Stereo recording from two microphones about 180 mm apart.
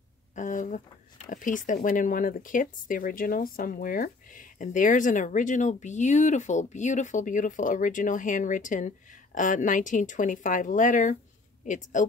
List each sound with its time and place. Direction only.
0.4 s speech: 45° left (ahead or behind)